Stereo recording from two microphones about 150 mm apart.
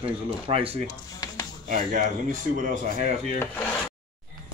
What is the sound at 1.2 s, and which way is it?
Music, 25° left (ahead or behind).